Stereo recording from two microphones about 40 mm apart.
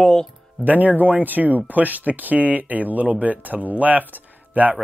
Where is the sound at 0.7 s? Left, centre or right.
Right.